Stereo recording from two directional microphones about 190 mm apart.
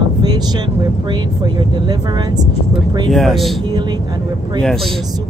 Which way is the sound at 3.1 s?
Centre (ahead or behind).